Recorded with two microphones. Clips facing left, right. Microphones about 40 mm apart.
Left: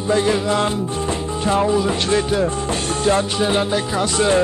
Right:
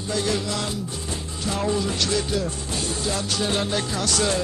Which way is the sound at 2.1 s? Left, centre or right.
Left.